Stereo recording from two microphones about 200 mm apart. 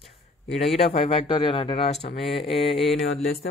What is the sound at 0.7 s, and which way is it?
Speech, 30° left (ahead or behind).